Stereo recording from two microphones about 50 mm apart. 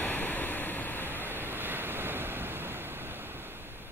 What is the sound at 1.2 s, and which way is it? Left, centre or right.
Waves, right.